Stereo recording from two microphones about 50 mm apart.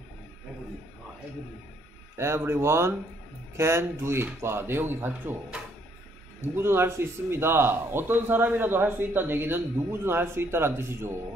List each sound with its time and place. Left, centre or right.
2.1 s speech: right
6.5 s a man's voice: right